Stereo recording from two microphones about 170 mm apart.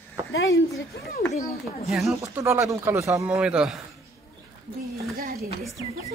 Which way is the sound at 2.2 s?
15° right (ahead or behind).